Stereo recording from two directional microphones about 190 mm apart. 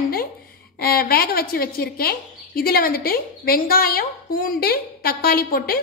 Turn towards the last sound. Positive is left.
turn(degrees=50)  # may be behind; listen again after turning